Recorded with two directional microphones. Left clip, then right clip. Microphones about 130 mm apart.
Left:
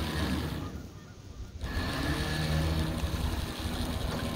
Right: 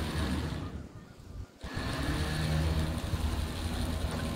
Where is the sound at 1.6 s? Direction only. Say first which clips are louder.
Left 2 dB; 20° right (ahead or behind).